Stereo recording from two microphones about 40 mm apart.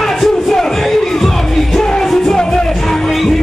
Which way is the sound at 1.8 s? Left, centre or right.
Centre.